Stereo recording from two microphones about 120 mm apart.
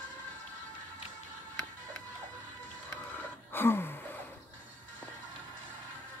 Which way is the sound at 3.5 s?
20° left (ahead or behind).